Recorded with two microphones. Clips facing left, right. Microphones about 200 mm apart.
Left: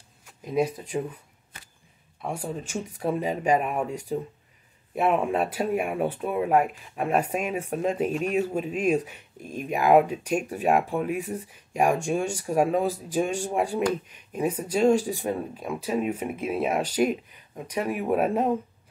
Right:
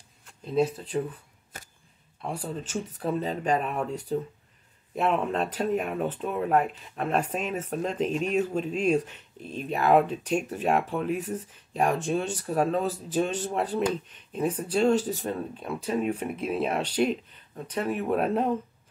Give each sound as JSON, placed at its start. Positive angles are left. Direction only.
{"t": 0.2, "sound": "speech", "side_deg": 10}
{"t": 1.5, "sound": "a sound", "side_deg": -45}
{"t": 2.2, "sound": "speech", "side_deg": 10}